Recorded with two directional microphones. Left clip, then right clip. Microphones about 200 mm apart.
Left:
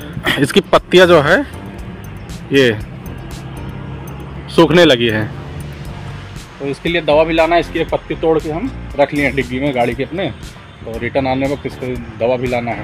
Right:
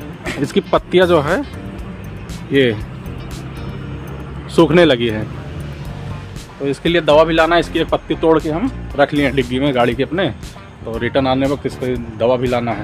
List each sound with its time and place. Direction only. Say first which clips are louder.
0.2 s speech: left 6 dB; 15° left (ahead or behind)
2.5 s speech: left 2 dB; 5° left (ahead or behind)
4.6 s speech: left 2 dB; 5° left (ahead or behind)
6.7 s speech: right 1 dB; 15° right (ahead or behind)